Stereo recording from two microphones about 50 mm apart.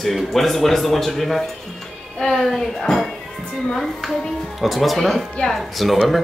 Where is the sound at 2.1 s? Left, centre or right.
Centre.